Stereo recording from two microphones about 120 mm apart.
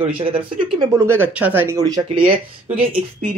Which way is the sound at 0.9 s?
20° right (ahead or behind).